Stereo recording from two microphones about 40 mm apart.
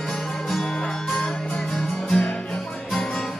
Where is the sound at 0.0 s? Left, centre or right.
Centre.